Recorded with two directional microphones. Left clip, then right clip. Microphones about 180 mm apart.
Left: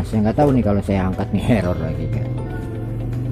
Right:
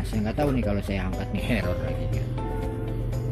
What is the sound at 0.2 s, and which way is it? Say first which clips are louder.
Speech: left 10 dB; 20° left (ahead or behind).